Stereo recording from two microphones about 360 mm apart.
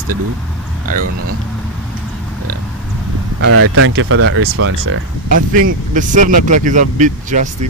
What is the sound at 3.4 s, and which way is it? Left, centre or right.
Speech, right.